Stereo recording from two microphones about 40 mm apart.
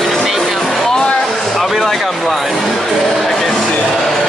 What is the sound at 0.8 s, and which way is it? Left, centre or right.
Music, centre.